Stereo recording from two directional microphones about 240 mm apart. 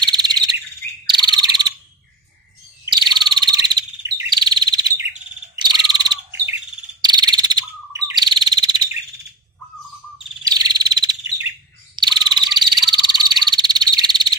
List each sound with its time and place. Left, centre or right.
0.0 s bird: centre
2.9 s frog: centre
5.6 s bird: centre
10.4 s cricket: centre
11.9 s frog: centre